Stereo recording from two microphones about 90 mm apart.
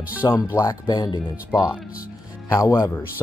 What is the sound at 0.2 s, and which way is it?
Speech, 45° left (ahead or behind).